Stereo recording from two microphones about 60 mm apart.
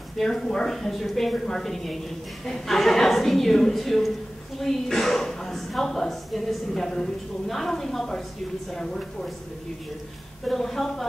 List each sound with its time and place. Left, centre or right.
0.2 s a woman's voice: centre
10.4 s a woman's voice: centre